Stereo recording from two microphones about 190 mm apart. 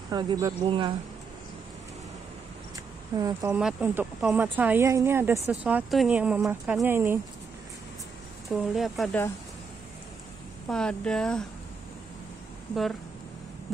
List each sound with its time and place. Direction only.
0.1 s speech: 20° right (ahead or behind)
3.2 s speech: 20° right (ahead or behind)
3.5 s speech: 5° right (ahead or behind)
8.5 s speech: centre (ahead or behind)
10.7 s speech: 5° left (ahead or behind)